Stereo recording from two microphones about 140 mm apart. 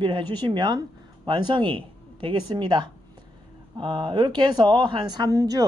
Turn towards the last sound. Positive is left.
turn(degrees=-25)  # may be behind; listen again after turning